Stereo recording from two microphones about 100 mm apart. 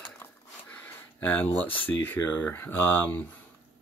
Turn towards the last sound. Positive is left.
turn(degrees=20)  # may be behind; listen again after turning